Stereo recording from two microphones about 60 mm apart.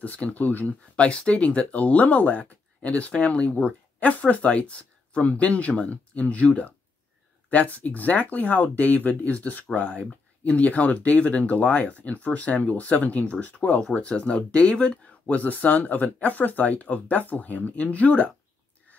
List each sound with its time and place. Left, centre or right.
0.0 s speech: left